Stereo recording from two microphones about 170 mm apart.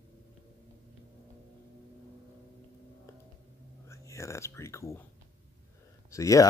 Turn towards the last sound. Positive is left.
turn(degrees=20)  # may be behind; listen again after turning